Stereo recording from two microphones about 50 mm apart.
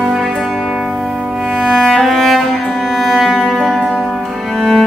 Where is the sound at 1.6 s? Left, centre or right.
Centre.